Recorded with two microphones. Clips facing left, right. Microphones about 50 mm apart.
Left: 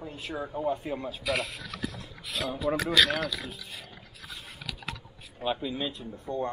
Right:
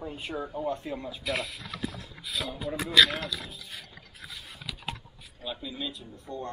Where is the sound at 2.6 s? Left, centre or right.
Left.